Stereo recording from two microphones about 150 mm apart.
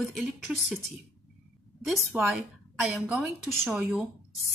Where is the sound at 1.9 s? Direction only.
Centre (ahead or behind).